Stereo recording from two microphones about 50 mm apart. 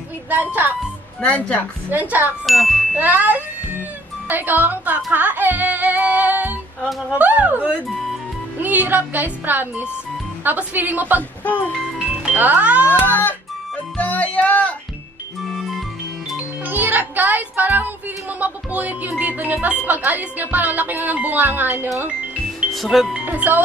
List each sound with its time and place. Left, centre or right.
0.3 s speech: right
1.9 s speech: right
2.4 s ding: centre
3.0 s speech: right
12.3 s speech: right
13.0 s music: left
15.4 s music: centre
16.6 s speech: right
22.8 s speech: centre
23.3 s speech: right